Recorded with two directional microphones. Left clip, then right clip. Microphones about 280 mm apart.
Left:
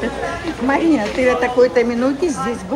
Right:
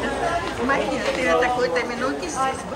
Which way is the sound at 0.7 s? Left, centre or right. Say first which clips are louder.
Left 7 dB; centre.